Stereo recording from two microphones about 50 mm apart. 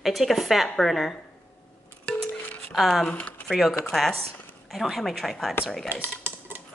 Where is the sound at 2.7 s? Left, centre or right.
Centre.